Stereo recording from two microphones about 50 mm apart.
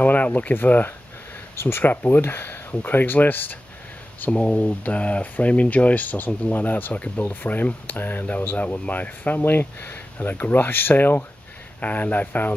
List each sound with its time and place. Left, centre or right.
0.0 s speech: left
1.6 s speech: left
4.3 s speech: left